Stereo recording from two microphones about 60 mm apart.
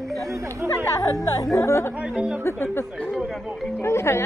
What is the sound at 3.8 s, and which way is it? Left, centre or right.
Speech, left.